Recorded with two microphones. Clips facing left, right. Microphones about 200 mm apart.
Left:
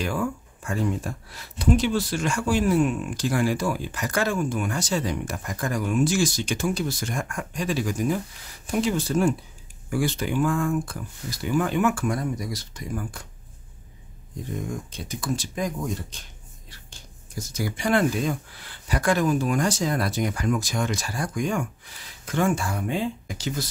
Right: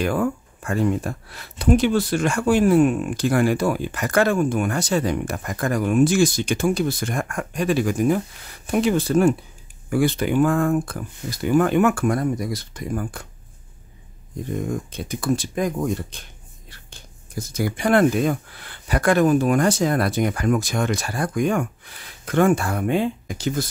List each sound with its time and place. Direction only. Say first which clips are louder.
0.0 s speech: right 5 dB; 55° right (ahead or behind)
14.7 s speech: right 6 dB; 55° right (ahead or behind)